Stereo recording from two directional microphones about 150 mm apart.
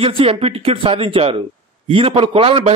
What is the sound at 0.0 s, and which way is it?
A man's voice, 40° right (ahead or behind).